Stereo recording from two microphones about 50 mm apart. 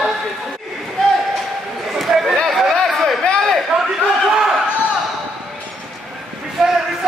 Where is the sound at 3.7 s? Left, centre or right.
Right.